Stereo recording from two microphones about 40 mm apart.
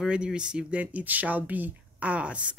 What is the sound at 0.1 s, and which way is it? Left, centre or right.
Speech, right.